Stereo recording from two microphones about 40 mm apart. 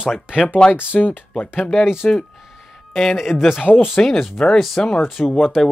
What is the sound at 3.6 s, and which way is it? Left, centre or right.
Speech, left.